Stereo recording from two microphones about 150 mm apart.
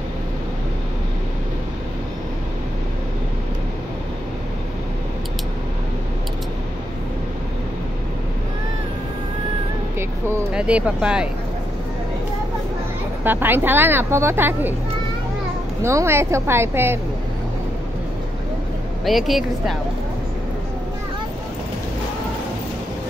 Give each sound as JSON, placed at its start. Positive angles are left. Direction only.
{"t": 9.9, "sound": "a sound", "side_deg": -15}
{"t": 10.5, "sound": "speech", "side_deg": -5}
{"t": 13.2, "sound": "speech", "side_deg": -15}
{"t": 15.8, "sound": "speech", "side_deg": -20}
{"t": 19.0, "sound": "speech", "side_deg": 0}